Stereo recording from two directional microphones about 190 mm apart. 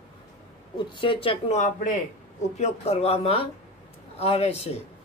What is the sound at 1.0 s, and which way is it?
Speech, 25° left (ahead or behind).